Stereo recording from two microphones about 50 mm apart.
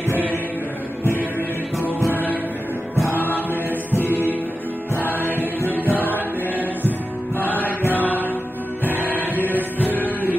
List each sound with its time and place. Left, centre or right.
3.1 s music: left
4.1 s music: right
4.9 s music: left
7.3 s music: left
8.8 s music: left
9.1 s music: right